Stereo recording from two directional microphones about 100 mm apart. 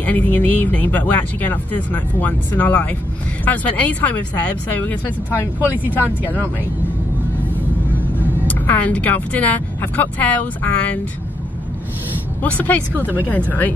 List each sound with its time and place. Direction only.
0.0 s speech: 15° left (ahead or behind)
5.6 s speech: 20° right (ahead or behind)
8.5 s speech: 15° left (ahead or behind)
12.4 s speech: 15° left (ahead or behind)
13.0 s speech: 20° right (ahead or behind)
13.5 s speech: 15° left (ahead or behind)